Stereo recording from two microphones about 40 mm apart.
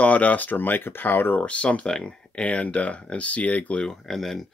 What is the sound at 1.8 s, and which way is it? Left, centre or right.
Speech, centre.